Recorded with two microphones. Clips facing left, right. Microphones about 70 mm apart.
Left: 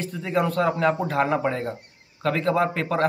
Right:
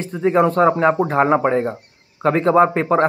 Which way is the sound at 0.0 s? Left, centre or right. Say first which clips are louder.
Right 8 dB; right.